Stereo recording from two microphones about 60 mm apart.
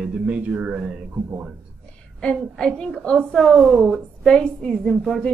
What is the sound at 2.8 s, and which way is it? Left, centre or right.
Speech, centre.